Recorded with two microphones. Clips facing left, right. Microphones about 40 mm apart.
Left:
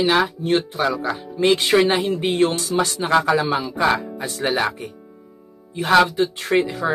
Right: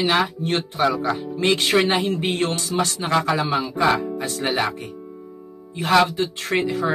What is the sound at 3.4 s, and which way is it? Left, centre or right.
Speech, centre.